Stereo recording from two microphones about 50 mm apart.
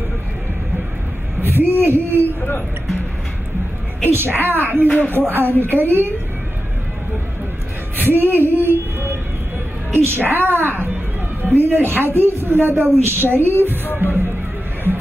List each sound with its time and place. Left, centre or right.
1.4 s a woman's voice: right
2.2 s speech: left
4.0 s a woman's voice: right
4.8 s speech: left
5.1 s a woman's voice: right
8.1 s a woman's voice: right
8.5 s a sound: right
9.9 s a woman's voice: right
13.9 s speech: right